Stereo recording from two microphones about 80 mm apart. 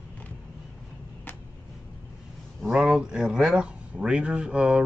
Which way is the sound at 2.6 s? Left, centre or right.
Centre.